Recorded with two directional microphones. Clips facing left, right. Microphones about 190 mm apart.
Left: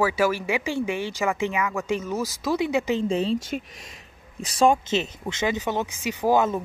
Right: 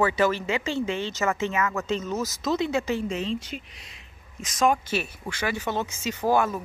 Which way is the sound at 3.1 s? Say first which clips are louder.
Left 5 dB; 35° left (ahead or behind).